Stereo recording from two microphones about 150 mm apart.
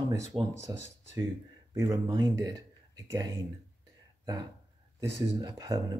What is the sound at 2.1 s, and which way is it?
Speech, 25° right (ahead or behind).